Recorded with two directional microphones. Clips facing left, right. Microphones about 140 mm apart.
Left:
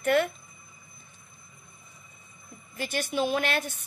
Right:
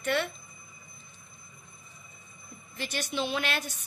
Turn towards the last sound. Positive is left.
turn(degrees=55)  # may be behind; listen again after turning